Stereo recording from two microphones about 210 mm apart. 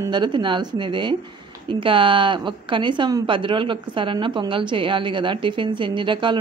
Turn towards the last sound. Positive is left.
turn(degrees=-25)  # may be behind; listen again after turning